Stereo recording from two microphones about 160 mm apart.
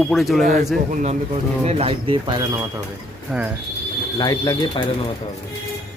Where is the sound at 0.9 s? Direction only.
45° right (ahead or behind); by 2.7 s 20° right (ahead or behind).